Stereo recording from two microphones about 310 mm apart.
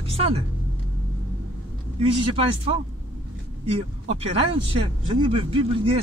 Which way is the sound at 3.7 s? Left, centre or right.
Centre.